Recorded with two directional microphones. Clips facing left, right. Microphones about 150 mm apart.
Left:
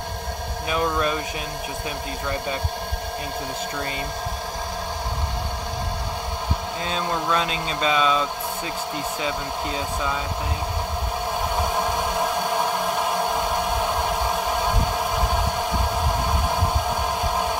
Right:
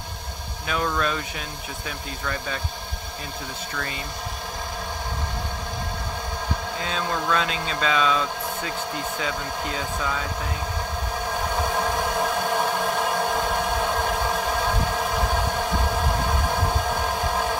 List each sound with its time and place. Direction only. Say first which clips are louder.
0.7 s speech: left 2 dB; 15° left (ahead or behind)
6.9 s speech: left 1 dB; 25° left (ahead or behind)
7.4 s speech: left 1 dB; 30° left (ahead or behind)
8.0 s speech: left 1 dB; 5° left (ahead or behind)
9.8 s speech: left 1 dB; 20° left (ahead or behind)
11.7 s a sound: left 1 dB; 15° left (ahead or behind)